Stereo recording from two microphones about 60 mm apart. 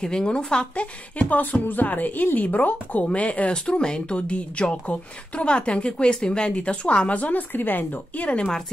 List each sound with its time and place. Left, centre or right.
0.0 s a woman's voice: centre; by 8.3 s left